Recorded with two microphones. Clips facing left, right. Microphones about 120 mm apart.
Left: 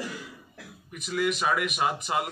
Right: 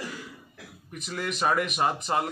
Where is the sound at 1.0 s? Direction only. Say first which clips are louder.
Left 2 dB; centre (ahead or behind).